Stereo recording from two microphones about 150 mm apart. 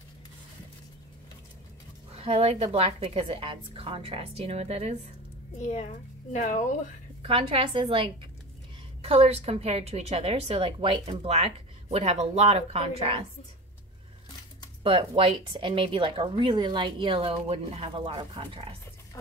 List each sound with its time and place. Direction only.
2.1 s speech: 40° right (ahead or behind)
5.6 s a child's voice: 50° left (ahead or behind)
7.2 s a woman's voice: 35° right (ahead or behind)
14.8 s speech: 35° right (ahead or behind)